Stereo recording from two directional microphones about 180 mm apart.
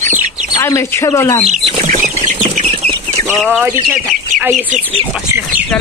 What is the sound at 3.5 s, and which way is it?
Speech, 10° right (ahead or behind).